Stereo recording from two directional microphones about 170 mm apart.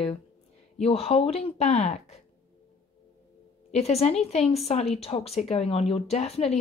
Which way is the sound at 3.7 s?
40° left (ahead or behind).